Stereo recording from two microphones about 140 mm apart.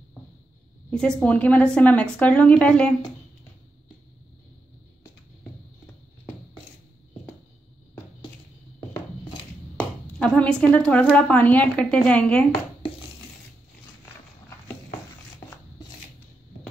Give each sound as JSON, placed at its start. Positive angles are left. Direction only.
{"t": 0.8, "sound": "a woman's voice", "side_deg": 5}
{"t": 8.9, "sound": "a sound", "side_deg": 35}
{"t": 10.1, "sound": "speech", "side_deg": 5}